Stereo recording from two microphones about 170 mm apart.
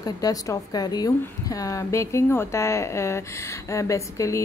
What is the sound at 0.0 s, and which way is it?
A woman's voice, 20° left (ahead or behind).